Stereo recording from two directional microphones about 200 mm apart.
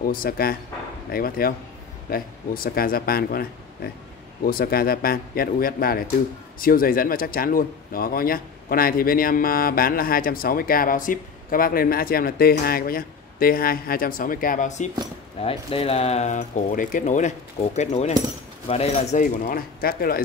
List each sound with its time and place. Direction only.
0.0 s speech: 45° left (ahead or behind)